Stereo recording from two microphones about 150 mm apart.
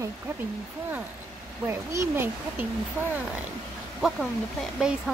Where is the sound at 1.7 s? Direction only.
15° right (ahead or behind).